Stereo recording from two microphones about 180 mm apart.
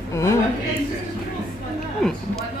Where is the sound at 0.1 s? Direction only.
15° left (ahead or behind).